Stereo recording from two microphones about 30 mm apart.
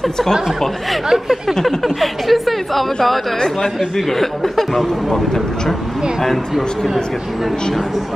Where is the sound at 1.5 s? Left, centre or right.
Centre.